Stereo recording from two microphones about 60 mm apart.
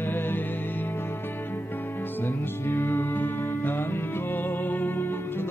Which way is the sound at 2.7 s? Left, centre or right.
Left.